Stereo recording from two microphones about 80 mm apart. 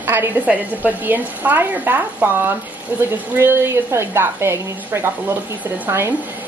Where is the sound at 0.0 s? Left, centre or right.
Right.